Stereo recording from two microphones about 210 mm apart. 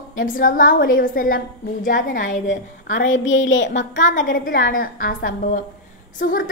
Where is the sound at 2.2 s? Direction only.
60° left (ahead or behind).